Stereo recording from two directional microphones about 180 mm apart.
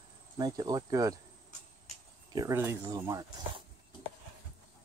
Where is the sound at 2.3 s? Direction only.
20° right (ahead or behind).